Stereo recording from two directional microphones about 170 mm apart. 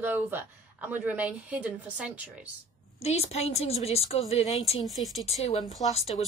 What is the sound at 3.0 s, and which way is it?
A woman's voice, 40° left (ahead or behind).